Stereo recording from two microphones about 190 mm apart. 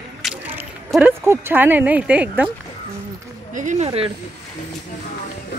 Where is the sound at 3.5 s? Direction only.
40° right (ahead or behind).